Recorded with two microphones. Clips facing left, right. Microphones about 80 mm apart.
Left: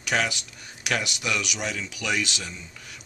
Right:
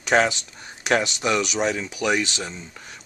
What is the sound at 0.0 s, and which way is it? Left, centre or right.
Speech, right.